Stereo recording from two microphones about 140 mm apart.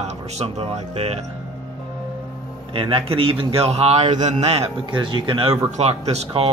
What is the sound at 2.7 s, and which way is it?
A man's voice, 40° right (ahead or behind).